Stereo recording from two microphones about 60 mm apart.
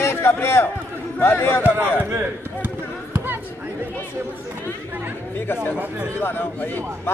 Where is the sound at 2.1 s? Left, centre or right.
Right.